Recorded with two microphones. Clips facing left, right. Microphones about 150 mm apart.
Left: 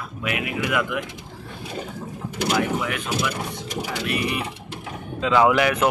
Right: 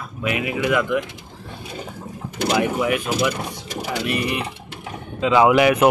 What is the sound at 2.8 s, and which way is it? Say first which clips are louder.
Speech: right 5 dB; 10° right (ahead or behind).